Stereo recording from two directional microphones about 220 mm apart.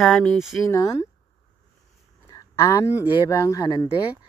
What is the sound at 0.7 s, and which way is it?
Speech, 15° left (ahead or behind).